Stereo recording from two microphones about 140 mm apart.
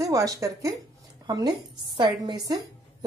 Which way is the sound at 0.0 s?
25° right (ahead or behind).